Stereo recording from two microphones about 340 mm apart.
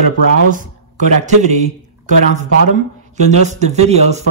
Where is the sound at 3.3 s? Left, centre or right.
Centre.